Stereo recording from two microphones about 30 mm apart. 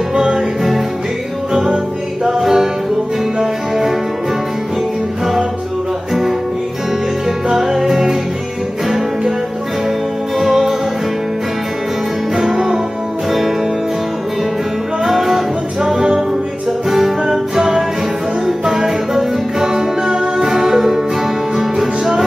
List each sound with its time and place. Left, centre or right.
1.5 s music: centre
7.4 s music: centre
10.4 s music: centre
12.4 s music: centre
15.0 s music: centre
18.7 s music: centre